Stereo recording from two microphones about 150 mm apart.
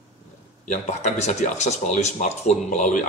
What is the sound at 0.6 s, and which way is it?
Speech, 50° left (ahead or behind).